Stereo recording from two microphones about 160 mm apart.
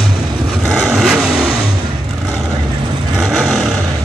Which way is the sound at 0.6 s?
Centre (ahead or behind).